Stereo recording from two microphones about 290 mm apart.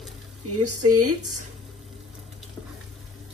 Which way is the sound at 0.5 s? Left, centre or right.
Right.